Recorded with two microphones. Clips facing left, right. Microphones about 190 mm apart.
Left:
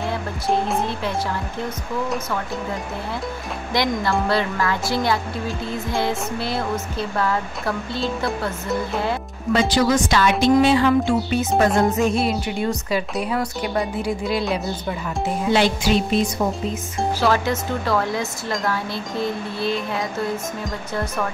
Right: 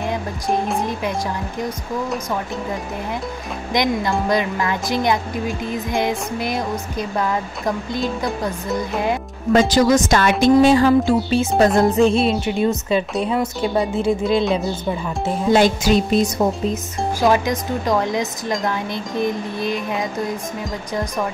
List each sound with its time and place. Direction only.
0.0 s music: 15° right (ahead or behind)
0.7 s a woman's voice: 15° right (ahead or behind)
3.7 s a woman's voice: 15° right (ahead or behind)
9.5 s speech: 45° right (ahead or behind)
10.4 s music: 45° right (ahead or behind); by 13.0 s 20° right (ahead or behind)
13.2 s speech: 25° right (ahead or behind)
15.5 s music: 45° right (ahead or behind)
17.2 s a woman's voice: 15° right (ahead or behind)